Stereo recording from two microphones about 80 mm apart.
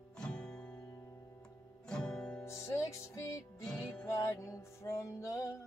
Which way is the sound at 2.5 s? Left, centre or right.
Left.